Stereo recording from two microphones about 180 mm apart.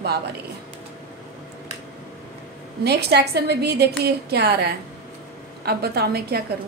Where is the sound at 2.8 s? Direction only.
65° right (ahead or behind).